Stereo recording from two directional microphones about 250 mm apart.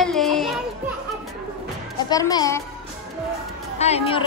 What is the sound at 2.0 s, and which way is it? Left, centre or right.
Speech, centre.